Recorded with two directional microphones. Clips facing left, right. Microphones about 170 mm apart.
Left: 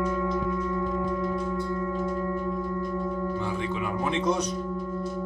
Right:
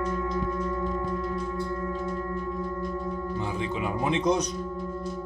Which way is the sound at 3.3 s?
20° right (ahead or behind).